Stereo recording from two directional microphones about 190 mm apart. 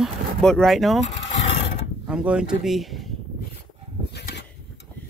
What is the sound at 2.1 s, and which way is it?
Speech, 5° right (ahead or behind).